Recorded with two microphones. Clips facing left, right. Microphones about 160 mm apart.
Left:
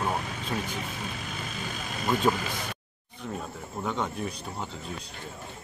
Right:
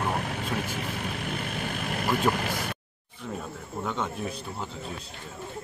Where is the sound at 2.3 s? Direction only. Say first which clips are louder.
Right 1 dB; 60° right (ahead or behind).